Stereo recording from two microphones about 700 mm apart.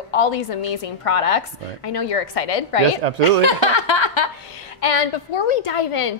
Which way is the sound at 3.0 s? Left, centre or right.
Right.